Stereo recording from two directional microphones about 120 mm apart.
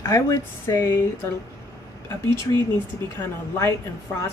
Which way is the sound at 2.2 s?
35° right (ahead or behind).